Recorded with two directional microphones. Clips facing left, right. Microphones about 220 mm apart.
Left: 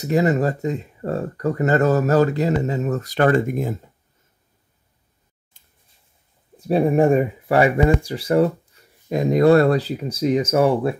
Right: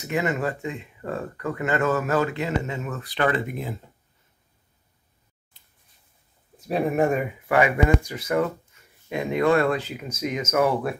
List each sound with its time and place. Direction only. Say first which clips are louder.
0.0 s speech: left 7 dB; 35° left (ahead or behind)
5.5 s a sound: left 1 dB; 50° left (ahead or behind)
6.7 s speech: left 6 dB; 30° left (ahead or behind)